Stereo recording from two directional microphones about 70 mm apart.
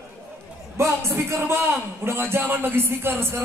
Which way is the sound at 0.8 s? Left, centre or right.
Right.